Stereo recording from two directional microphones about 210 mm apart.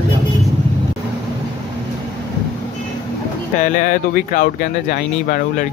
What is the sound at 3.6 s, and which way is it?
Speech, 40° left (ahead or behind).